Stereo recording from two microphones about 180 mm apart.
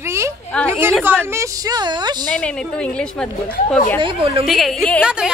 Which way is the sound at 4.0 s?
30° right (ahead or behind).